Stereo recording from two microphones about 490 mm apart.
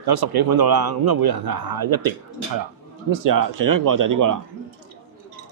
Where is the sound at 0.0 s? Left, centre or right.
Right.